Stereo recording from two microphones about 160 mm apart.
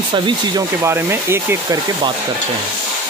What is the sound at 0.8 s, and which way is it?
Speech, 15° right (ahead or behind).